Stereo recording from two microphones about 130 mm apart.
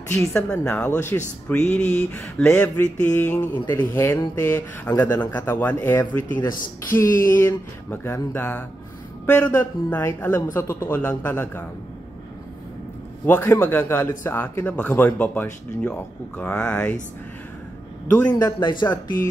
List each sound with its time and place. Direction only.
0.2 s a man's voice: 5° left (ahead or behind)
13.2 s a man's voice: 15° left (ahead or behind)
18.4 s a man's voice: 35° left (ahead or behind)